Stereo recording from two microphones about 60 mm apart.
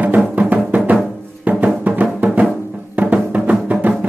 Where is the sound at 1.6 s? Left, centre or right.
Right.